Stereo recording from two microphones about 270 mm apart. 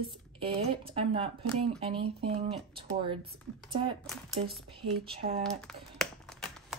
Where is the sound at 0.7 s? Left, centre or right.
Right.